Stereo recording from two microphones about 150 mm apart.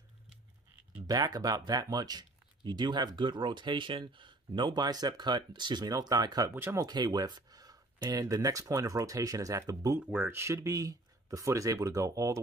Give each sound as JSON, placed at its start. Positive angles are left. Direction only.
{"t": 1.0, "sound": "speech", "side_deg": -25}